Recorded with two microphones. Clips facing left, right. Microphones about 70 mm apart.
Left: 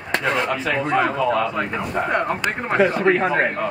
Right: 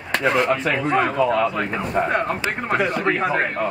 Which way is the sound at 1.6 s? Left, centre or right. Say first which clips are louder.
Right 1 dB; centre.